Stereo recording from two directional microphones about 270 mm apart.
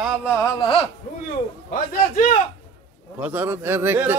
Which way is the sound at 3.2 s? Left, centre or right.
Centre.